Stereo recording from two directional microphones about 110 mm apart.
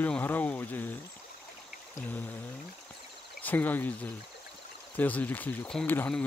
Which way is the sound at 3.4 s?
15° left (ahead or behind).